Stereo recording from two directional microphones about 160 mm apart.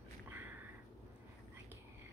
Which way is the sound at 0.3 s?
10° right (ahead or behind).